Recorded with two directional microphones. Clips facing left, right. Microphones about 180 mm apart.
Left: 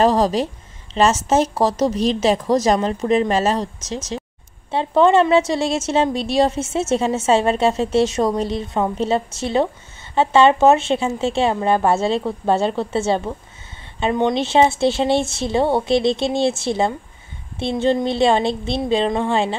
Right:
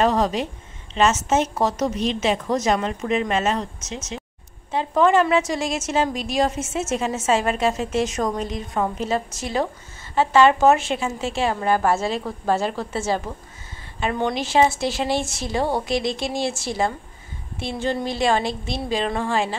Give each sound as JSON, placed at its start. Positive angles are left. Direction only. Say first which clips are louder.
{"t": 0.0, "sound": "a woman's voice", "louder": "left 4 dB", "side_deg": 35}